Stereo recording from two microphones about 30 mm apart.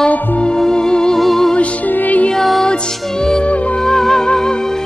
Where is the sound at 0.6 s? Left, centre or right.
Left.